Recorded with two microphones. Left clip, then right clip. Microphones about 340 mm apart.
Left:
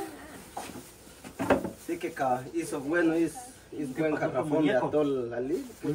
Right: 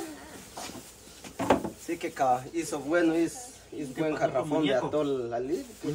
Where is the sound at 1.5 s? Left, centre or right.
Centre.